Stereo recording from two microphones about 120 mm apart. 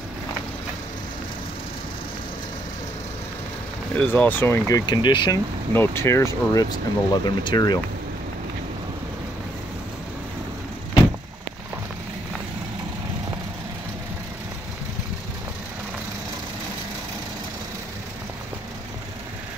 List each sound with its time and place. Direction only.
3.9 s speech: 15° left (ahead or behind)
4.6 s speech: 35° left (ahead or behind)
5.7 s speech: 20° left (ahead or behind)